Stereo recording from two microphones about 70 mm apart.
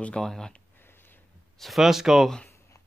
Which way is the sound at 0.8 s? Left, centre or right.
Left.